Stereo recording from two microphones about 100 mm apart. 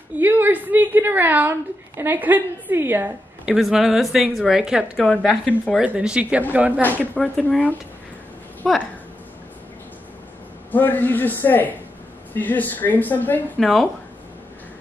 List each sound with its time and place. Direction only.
0.2 s a woman's voice: 20° right (ahead or behind)
3.4 s a woman's voice: 5° right (ahead or behind)
4.9 s speech: 10° left (ahead or behind)
5.8 s speech: 10° right (ahead or behind)
6.8 s speech: 20° left (ahead or behind)
7.2 s a woman's voice: 5° left (ahead or behind)
8.6 s a woman's voice: 5° left (ahead or behind)
10.7 s a man's voice: 20° left (ahead or behind)
13.6 s a woman's voice: 5° left (ahead or behind)